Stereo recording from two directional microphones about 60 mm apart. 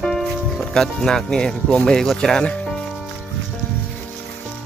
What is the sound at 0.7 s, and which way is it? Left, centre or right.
Speech, centre.